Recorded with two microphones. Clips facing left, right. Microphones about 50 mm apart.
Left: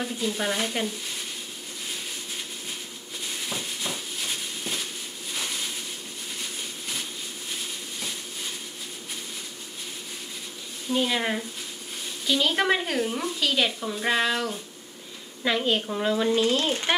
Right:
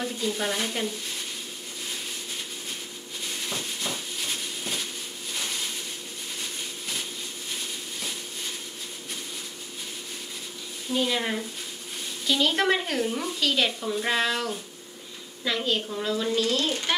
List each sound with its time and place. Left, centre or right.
0.0 s speech: centre
3.3 s a sound: centre
10.9 s speech: centre
15.4 s speech: left